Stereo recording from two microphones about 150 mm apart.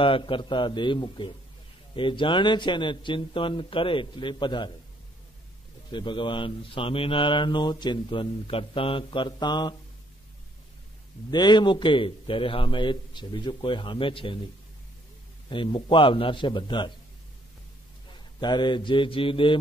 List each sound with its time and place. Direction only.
0.0 s speech: 35° left (ahead or behind)
5.9 s speech: 30° left (ahead or behind)
11.2 s speech: 30° left (ahead or behind)
15.5 s speech: 35° left (ahead or behind)
18.4 s speech: 30° left (ahead or behind)